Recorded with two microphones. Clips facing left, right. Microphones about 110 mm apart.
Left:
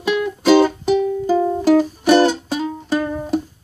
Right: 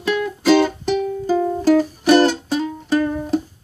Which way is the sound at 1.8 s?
Centre (ahead or behind).